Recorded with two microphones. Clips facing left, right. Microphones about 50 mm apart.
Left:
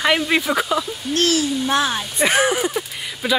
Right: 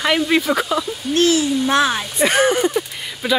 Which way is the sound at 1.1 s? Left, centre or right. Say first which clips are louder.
Right 3 dB; right.